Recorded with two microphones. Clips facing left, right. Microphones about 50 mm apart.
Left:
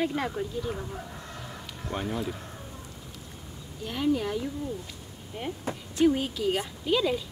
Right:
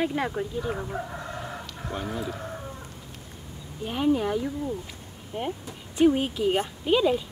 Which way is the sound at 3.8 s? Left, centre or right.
Right.